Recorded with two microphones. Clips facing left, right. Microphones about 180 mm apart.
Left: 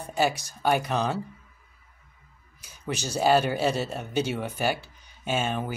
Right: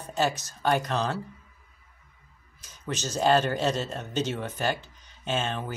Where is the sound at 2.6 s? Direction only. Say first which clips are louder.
Left 1 dB; 10° left (ahead or behind).